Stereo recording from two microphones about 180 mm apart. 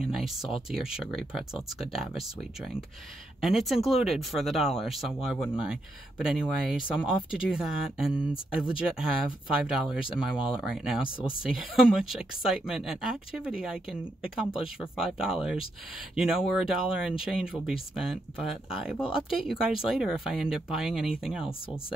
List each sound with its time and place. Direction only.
0.0 s speech: centre (ahead or behind)
3.3 s speech: centre (ahead or behind)
11.1 s speech: 30° left (ahead or behind)
11.4 s speech: 5° right (ahead or behind)